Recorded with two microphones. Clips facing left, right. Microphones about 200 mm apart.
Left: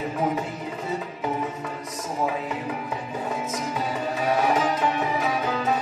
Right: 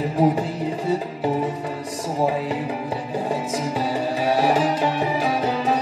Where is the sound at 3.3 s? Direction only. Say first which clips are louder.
Right 4 dB; 30° right (ahead or behind).